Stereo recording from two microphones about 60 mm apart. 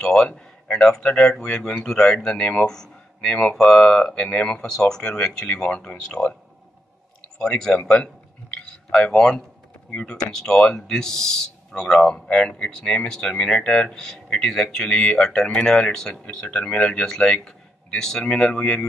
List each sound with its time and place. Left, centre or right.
0.0 s speech: centre
7.3 s speech: centre
7.9 s a sound: centre
8.9 s speech: centre